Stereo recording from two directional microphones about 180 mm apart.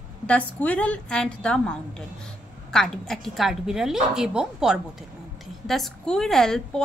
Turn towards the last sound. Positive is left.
turn(degrees=5)  # may be behind; listen again after turning